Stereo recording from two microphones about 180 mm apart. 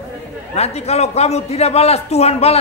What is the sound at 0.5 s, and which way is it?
A man's voice, 35° left (ahead or behind).